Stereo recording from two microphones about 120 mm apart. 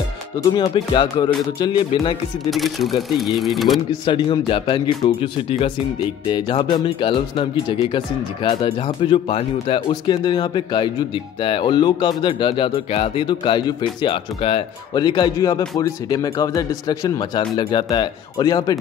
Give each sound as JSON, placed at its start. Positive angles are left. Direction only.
{"t": 0.4, "sound": "speech", "side_deg": 35}
{"t": 2.5, "sound": "speech", "side_deg": 0}
{"t": 3.9, "sound": "speech", "side_deg": 45}
{"t": 10.0, "sound": "speech", "side_deg": 40}
{"t": 15.0, "sound": "speech", "side_deg": 35}